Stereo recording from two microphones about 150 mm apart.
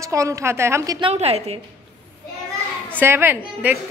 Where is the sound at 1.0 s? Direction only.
45° right (ahead or behind).